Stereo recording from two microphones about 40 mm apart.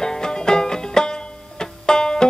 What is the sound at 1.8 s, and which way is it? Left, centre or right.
Banjo, centre.